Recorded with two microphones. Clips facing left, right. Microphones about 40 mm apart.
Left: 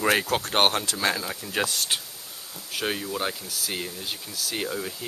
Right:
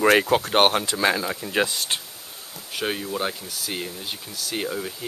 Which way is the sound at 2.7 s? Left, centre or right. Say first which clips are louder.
Right 2 dB; centre.